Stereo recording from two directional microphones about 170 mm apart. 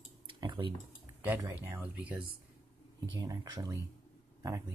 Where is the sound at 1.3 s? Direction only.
10° right (ahead or behind).